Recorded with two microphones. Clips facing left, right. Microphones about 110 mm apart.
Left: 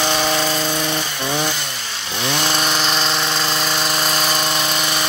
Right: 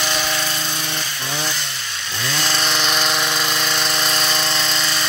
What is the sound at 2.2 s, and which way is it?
Chainsaw, 20° left (ahead or behind).